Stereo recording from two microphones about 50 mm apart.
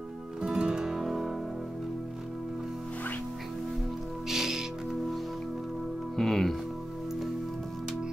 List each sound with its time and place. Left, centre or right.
0.4 s music: centre
4.3 s music: centre
6.1 s speech: centre